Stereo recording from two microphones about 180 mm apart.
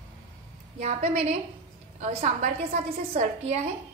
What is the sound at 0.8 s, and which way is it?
A woman's voice, 40° right (ahead or behind).